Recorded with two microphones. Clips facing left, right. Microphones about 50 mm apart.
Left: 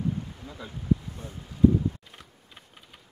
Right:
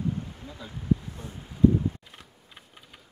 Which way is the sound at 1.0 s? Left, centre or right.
Right.